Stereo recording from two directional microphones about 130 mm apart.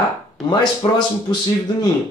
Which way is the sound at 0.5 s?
35° left (ahead or behind).